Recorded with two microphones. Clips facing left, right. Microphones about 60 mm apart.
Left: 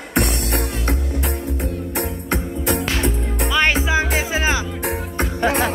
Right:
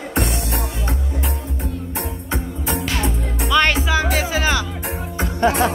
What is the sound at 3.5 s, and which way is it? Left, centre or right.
Music, centre.